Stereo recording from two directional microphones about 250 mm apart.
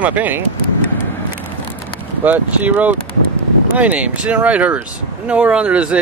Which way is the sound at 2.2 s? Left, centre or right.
Centre.